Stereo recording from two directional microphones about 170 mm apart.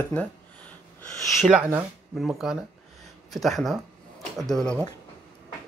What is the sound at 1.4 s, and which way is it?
Speech, 5° right (ahead or behind).